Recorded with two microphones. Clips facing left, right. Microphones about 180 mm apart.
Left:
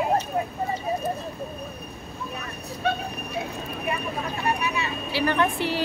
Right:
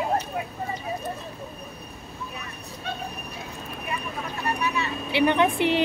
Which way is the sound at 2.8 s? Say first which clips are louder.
Left 9 dB; 65° left (ahead or behind).